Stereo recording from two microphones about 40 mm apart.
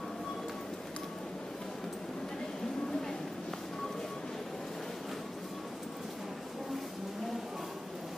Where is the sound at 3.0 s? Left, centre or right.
Centre.